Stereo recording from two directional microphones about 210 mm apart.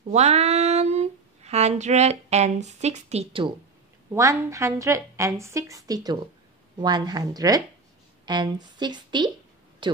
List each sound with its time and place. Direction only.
0.1 s speech: 30° right (ahead or behind)
4.1 s a woman's voice: 15° right (ahead or behind)